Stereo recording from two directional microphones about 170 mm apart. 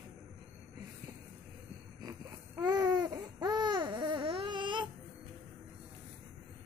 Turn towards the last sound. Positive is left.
turn(degrees=-30)  # may be behind; listen again after turning